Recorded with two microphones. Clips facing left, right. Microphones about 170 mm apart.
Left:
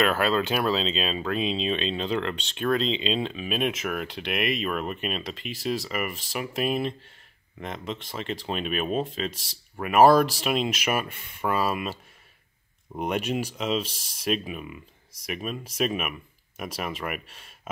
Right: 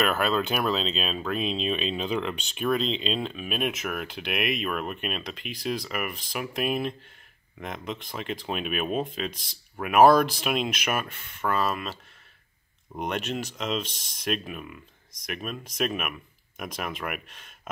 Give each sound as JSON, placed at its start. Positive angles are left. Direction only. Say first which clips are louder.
{"t": 0.0, "sound": "speech", "louder": "left 2 dB", "side_deg": 0}